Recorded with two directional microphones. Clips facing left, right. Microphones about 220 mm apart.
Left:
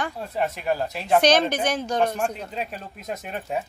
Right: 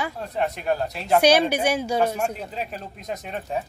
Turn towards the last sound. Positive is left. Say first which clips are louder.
# even
turn(degrees=5)  # may be behind; listen again after turning